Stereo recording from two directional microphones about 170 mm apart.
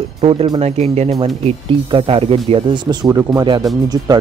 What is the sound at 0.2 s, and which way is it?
Speech, 35° right (ahead or behind).